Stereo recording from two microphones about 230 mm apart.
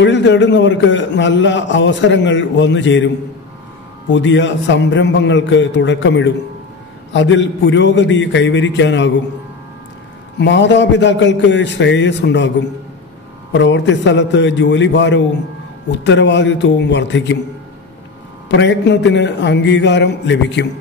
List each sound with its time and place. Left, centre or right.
0.0 s a man's voice: left
4.1 s a man's voice: left
10.4 s a man's voice: left
18.5 s a man's voice: left